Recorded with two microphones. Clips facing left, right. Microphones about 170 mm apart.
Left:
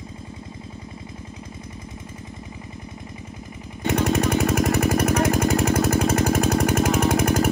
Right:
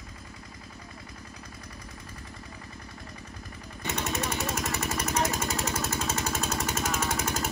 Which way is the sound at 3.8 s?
60° left (ahead or behind).